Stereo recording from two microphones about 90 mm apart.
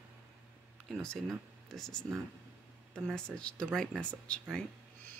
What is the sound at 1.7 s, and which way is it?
Speech, 5° left (ahead or behind).